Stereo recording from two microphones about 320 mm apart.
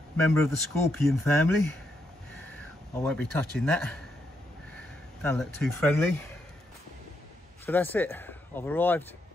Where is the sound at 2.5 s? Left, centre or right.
Centre.